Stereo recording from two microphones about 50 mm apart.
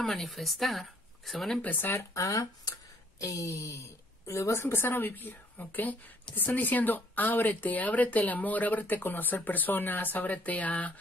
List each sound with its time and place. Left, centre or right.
0.0 s speech: centre
1.6 s a woman's voice: left
1.9 s speech: left
3.2 s a woman's voice: left